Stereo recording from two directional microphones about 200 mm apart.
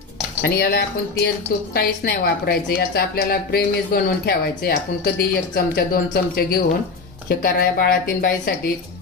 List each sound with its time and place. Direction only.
0.4 s a woman's voice: 50° left (ahead or behind)